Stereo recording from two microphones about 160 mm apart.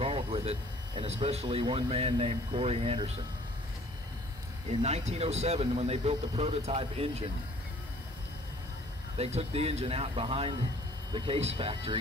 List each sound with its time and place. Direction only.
0.0 s speech: 35° right (ahead or behind)
4.6 s speech: 40° right (ahead or behind)
9.2 s speech: 40° right (ahead or behind)